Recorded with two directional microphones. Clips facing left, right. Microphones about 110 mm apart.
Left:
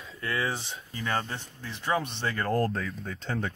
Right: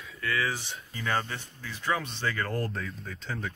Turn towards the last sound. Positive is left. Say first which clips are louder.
# left 4 dB
turn(degrees=60)  # may be behind; listen again after turning